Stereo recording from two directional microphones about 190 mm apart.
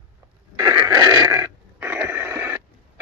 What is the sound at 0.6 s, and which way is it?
Wheeze, 20° right (ahead or behind).